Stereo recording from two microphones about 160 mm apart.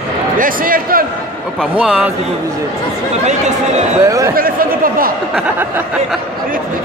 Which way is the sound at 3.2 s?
45° right (ahead or behind).